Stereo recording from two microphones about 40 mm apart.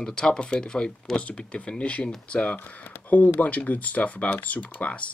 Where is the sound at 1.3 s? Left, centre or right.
Left.